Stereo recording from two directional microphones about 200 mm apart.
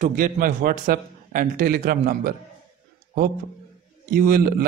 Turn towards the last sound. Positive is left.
turn(degrees=-50)  # may be behind; listen again after turning